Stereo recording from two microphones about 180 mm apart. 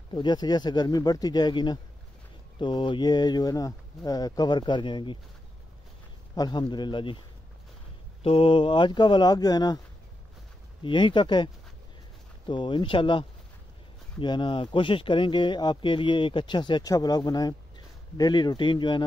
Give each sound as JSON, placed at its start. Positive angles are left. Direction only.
{"t": 0.1, "sound": "speech", "side_deg": 25}
{"t": 6.3, "sound": "speech", "side_deg": 25}
{"t": 8.2, "sound": "speech", "side_deg": 30}
{"t": 10.8, "sound": "speech", "side_deg": 25}